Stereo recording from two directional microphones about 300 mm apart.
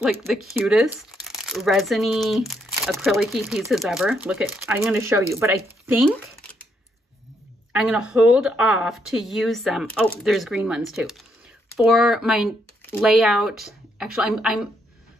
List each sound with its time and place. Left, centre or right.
0.0 s speech: centre
7.7 s speech: centre